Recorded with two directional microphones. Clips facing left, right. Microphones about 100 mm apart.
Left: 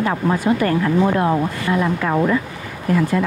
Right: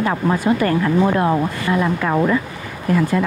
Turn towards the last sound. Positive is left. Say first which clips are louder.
# even
turn(degrees=-30)  # may be behind; listen again after turning